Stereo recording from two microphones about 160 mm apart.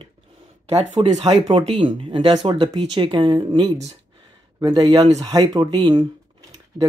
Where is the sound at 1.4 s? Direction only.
30° right (ahead or behind).